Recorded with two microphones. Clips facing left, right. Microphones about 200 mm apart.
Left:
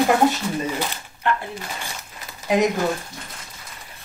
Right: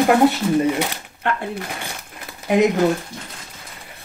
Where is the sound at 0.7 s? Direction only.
65° right (ahead or behind).